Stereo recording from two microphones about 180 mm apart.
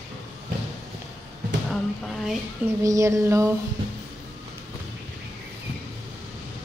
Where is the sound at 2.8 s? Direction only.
20° right (ahead or behind).